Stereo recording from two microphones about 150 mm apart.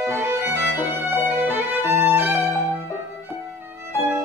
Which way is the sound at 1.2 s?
15° right (ahead or behind).